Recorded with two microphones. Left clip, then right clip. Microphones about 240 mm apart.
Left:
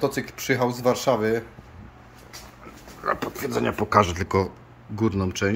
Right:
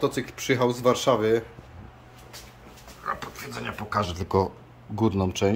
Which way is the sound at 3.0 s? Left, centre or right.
Left.